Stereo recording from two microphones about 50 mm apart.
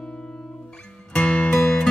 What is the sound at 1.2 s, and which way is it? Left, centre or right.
Music, left.